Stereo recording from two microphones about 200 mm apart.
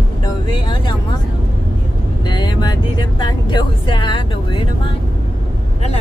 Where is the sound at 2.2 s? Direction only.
20° left (ahead or behind).